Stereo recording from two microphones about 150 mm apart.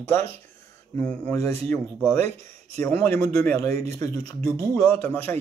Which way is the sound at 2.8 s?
10° left (ahead or behind).